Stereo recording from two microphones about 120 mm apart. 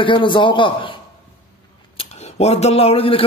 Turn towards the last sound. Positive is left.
turn(degrees=50)  # may be behind; listen again after turning